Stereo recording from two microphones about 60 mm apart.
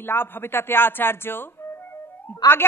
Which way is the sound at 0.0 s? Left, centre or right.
Left.